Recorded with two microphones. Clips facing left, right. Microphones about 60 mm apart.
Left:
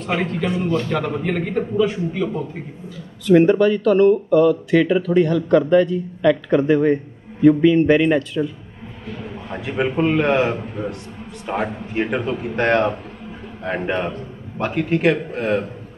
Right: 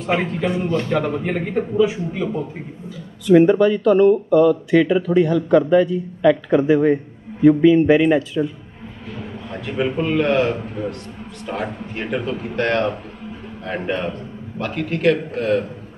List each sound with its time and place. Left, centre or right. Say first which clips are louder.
0.2 s speech: even; centre
9.5 s a man's voice: even; centre